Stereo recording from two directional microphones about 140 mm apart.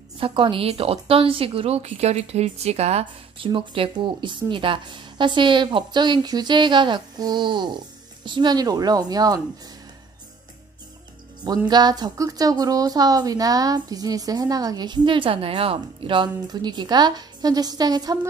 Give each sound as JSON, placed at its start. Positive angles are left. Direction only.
{"t": 0.2, "sound": "speech", "side_deg": -35}
{"t": 11.4, "sound": "speech", "side_deg": -30}